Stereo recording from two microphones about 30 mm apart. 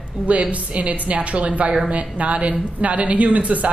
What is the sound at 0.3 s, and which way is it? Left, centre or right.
A woman's voice, right.